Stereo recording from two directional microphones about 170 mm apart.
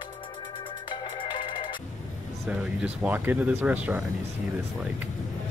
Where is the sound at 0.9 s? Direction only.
30° left (ahead or behind).